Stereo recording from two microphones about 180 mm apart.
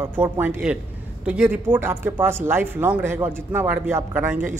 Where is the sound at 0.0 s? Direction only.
10° right (ahead or behind).